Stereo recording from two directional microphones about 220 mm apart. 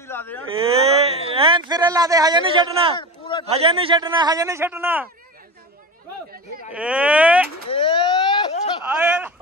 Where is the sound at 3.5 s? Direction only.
25° right (ahead or behind); by 5.0 s 10° right (ahead or behind).